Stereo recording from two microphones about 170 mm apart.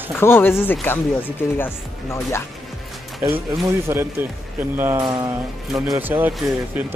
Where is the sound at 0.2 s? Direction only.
15° left (ahead or behind).